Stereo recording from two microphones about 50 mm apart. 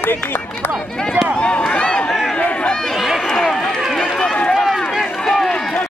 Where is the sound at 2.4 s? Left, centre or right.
Left.